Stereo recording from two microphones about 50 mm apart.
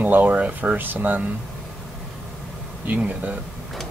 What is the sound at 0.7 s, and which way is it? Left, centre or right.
Speech, right.